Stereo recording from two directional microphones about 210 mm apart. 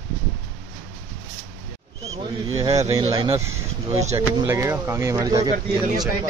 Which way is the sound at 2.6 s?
15° right (ahead or behind).